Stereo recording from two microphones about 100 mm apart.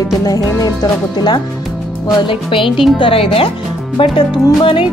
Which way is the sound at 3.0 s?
70° left (ahead or behind).